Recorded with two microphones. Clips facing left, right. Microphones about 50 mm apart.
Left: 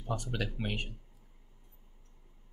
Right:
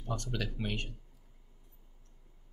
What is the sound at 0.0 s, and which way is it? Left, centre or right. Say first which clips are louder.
Speech: left 1 dB; centre.